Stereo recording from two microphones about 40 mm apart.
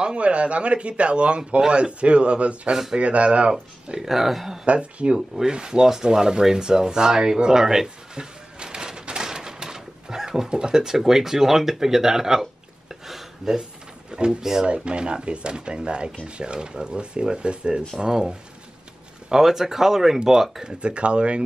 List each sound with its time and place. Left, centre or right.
0.0 s speech: right
2.7 s speech: centre
3.0 s speech: right
4.1 s speech: centre
4.6 s speech: right; by 8.2 s centre
8.2 s a sound: centre
14.1 s speech: right
14.7 s speech: right; by 20.6 s centre
20.6 s speech: right